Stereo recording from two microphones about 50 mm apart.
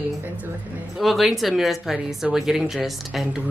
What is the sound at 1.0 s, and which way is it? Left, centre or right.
Speech, centre.